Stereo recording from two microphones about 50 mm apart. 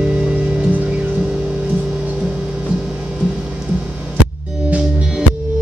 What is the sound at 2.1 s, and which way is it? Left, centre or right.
Music, right.